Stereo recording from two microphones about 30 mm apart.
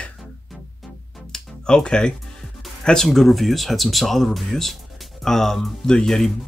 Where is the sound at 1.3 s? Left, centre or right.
Left.